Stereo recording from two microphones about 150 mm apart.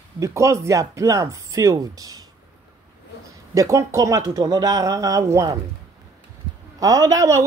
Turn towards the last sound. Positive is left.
turn(degrees=-20)  # may be behind; listen again after turning